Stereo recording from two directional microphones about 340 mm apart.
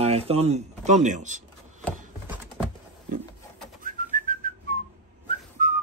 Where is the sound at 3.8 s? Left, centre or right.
Right.